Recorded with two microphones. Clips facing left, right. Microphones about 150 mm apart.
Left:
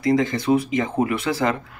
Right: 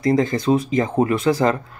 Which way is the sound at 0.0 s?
45° right (ahead or behind).